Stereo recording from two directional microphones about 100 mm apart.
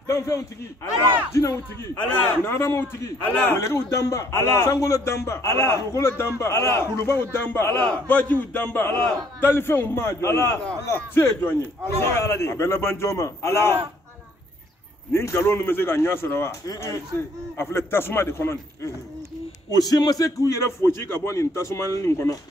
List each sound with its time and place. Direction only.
0.0 s a sound: 30° left (ahead or behind)
1.3 s a man's voice: 30° left (ahead or behind)
15.1 s a man's voice: 25° left (ahead or behind)
19.7 s a man's voice: 40° left (ahead or behind)